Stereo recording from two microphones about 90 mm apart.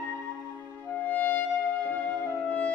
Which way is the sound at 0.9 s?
20° left (ahead or behind).